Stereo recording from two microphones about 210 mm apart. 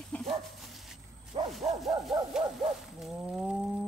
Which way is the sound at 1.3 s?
30° right (ahead or behind).